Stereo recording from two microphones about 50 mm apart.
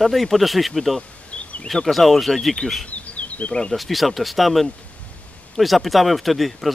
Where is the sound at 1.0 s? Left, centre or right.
Left.